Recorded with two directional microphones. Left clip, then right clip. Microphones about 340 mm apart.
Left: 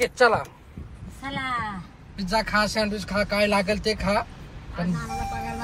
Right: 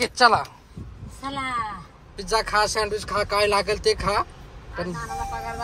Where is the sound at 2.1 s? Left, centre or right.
Centre.